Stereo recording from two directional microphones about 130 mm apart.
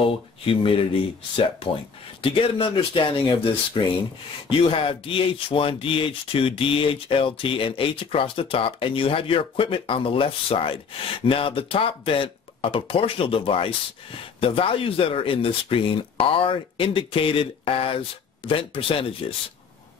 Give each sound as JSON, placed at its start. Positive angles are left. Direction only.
{"t": 0.5, "sound": "speech", "side_deg": 45}